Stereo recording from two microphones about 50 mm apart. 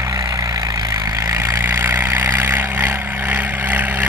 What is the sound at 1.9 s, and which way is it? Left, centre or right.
Vehicle, right.